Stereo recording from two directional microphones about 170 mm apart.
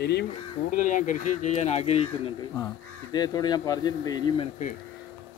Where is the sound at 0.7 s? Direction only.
50° left (ahead or behind).